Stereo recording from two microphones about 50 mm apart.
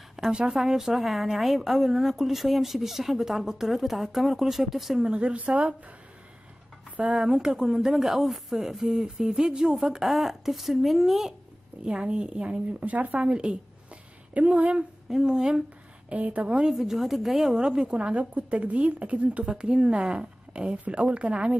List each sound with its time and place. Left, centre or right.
0.3 s a woman's voice: centre
0.6 s speech: centre
5.0 s a woman's voice: right
7.1 s speech: centre
11.8 s a woman's voice: centre
12.8 s speech: right
13.2 s a woman's voice: centre
15.0 s speech: centre
16.1 s a woman's voice: right
16.7 s a woman's voice: centre; by 21.5 s right